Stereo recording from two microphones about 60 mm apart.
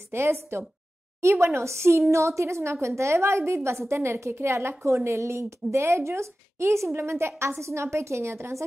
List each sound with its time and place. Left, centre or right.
0.1 s a woman's voice: right